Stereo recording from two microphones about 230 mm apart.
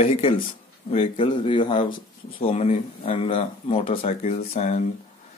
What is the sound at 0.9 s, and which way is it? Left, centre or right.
Speech, left.